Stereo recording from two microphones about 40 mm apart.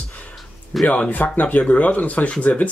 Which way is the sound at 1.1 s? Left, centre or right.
Left.